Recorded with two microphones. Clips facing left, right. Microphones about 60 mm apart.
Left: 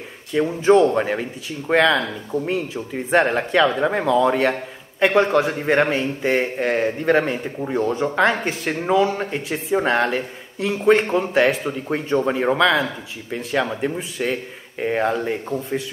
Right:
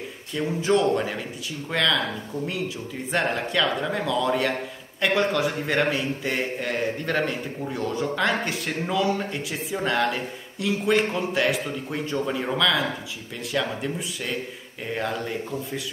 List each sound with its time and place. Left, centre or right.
0.3 s a man's voice: left